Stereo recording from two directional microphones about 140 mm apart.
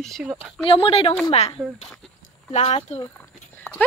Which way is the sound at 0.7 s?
40° left (ahead or behind).